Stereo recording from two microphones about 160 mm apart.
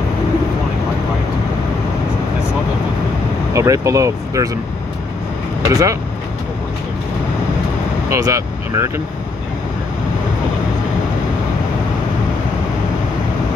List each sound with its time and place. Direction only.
3.5 s speech: 20° right (ahead or behind)
5.7 s speech: 20° right (ahead or behind)
8.1 s speech: 20° right (ahead or behind)